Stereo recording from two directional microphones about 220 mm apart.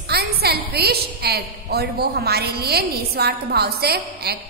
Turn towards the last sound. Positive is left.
turn(degrees=-45)  # may be behind; listen again after turning